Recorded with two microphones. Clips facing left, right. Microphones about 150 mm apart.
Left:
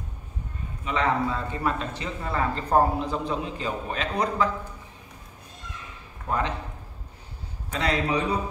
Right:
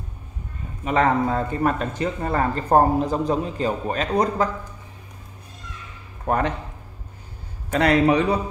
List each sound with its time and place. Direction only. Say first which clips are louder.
0.8 s speech: right 5 dB; 50° right (ahead or behind)
6.2 s speech: right 5 dB; 55° right (ahead or behind)
7.7 s a man's voice: right 8 dB; 60° right (ahead or behind)